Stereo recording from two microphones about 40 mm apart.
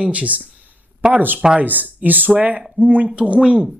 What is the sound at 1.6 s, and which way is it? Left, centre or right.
Speech, right.